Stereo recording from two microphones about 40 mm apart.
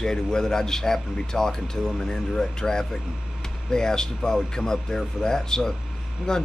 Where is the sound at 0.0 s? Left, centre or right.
Centre.